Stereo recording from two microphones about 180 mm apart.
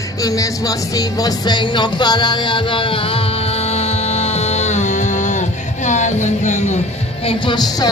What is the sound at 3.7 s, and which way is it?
Music, 35° left (ahead or behind).